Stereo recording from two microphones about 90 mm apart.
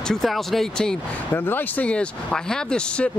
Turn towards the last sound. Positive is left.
turn(degrees=10)  # may be behind; listen again after turning